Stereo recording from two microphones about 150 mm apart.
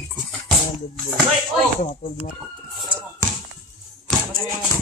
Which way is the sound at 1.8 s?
60° left (ahead or behind).